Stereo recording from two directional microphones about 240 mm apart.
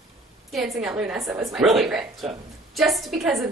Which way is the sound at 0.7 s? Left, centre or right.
Centre.